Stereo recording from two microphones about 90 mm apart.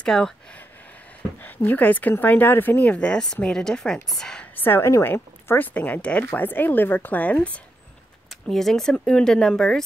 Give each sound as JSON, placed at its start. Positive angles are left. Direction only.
{"t": 0.0, "sound": "speech", "side_deg": 10}
{"t": 1.4, "sound": "speech", "side_deg": 20}
{"t": 4.6, "sound": "speech", "side_deg": 25}
{"t": 8.3, "sound": "speech", "side_deg": 5}